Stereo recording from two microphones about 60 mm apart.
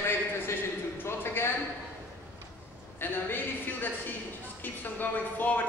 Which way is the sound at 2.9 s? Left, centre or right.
Left.